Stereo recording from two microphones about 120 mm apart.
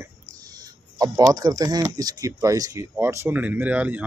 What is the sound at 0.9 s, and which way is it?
Speech, 30° right (ahead or behind).